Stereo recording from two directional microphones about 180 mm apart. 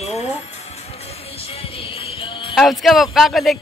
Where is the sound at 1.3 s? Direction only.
35° left (ahead or behind).